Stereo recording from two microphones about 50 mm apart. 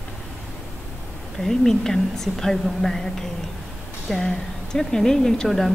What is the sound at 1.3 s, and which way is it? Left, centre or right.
A woman's voice, centre.